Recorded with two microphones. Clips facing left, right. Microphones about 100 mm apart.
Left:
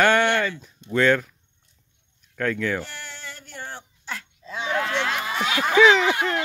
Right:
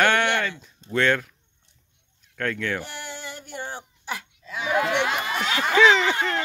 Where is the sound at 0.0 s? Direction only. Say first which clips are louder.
Left 2 dB; 10° left (ahead or behind).